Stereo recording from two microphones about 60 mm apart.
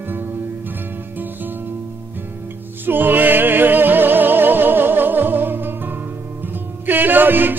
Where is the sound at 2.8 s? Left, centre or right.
Right.